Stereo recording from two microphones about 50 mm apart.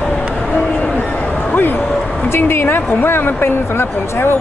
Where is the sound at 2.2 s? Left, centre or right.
Left.